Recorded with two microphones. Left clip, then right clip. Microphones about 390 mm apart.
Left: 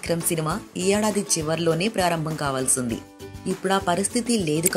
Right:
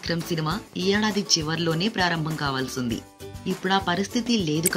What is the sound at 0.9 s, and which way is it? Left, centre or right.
Speech, centre.